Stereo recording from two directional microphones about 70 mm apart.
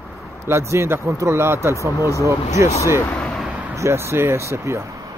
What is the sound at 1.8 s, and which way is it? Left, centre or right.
Speech, right.